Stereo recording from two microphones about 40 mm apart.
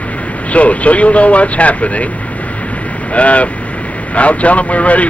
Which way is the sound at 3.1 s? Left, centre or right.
Left.